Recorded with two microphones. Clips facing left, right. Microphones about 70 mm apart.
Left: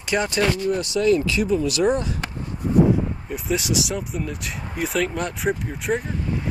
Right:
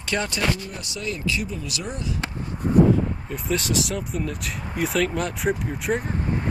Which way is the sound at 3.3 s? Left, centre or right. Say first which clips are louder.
Left 1 dB; centre.